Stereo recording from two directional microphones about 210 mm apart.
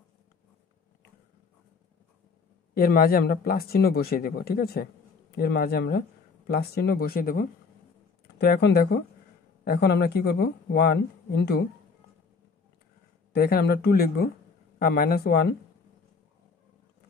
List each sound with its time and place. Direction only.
2.7 s speech: 45° left (ahead or behind)
13.3 s speech: 50° left (ahead or behind)